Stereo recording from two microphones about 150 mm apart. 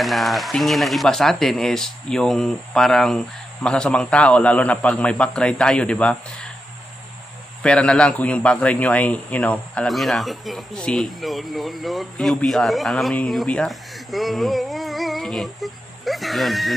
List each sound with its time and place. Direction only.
0.0 s a man's voice: centre (ahead or behind)
7.6 s a man's voice: 5° left (ahead or behind)